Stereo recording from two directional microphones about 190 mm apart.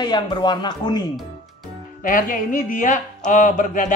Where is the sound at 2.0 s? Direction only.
45° left (ahead or behind).